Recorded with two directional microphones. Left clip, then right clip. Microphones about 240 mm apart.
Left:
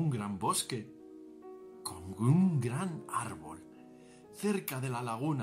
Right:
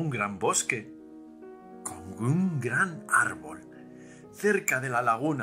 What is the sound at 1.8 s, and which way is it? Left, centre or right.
Speech, left.